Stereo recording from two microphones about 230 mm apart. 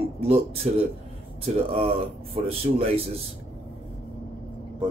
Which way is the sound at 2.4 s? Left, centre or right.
Right.